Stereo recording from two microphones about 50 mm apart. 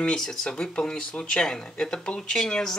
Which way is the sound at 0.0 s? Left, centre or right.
Centre.